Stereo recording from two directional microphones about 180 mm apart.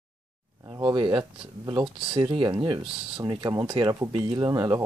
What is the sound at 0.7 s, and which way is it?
Speech, 25° right (ahead or behind).